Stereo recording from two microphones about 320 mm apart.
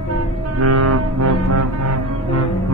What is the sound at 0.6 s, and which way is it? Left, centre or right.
Music, right.